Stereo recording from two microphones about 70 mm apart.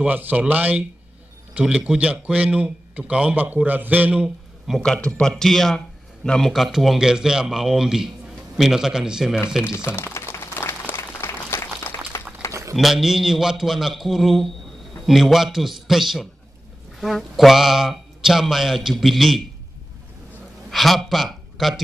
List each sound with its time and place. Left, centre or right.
0.0 s a man's voice: right
4.8 s a man's voice: centre
6.5 s speech: centre
9.7 s a sound: left
12.7 s speech: centre
20.7 s speech: centre